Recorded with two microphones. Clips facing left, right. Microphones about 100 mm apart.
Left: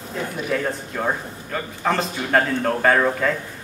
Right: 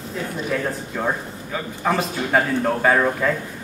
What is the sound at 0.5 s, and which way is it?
A man's voice, centre (ahead or behind).